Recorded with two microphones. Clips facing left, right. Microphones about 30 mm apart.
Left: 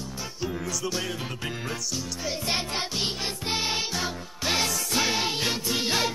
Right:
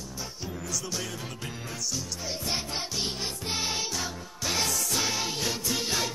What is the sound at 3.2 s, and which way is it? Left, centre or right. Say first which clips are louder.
Music: left 3 dB; left.